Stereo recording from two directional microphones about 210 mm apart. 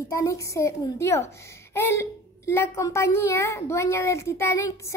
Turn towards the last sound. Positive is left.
turn(degrees=15)  # may be behind; listen again after turning